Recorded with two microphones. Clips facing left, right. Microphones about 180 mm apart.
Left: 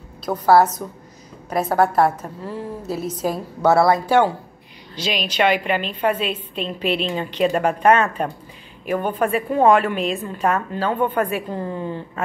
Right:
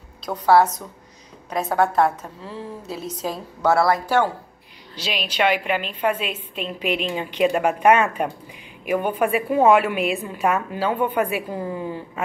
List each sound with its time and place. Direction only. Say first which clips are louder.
0.2 s a woman's voice: left 2 dB; 5° left (ahead or behind)
3.7 s speech: left 3 dB; 25° left (ahead or behind)
4.9 s a woman's voice: left 3 dB; 10° right (ahead or behind)